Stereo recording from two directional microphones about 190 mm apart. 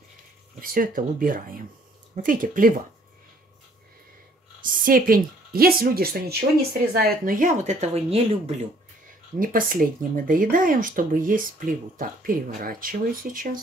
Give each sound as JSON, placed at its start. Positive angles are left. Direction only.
{"t": 0.6, "sound": "speech", "side_deg": -45}
{"t": 4.6, "sound": "a woman's voice", "side_deg": -50}
{"t": 9.4, "sound": "speech", "side_deg": -45}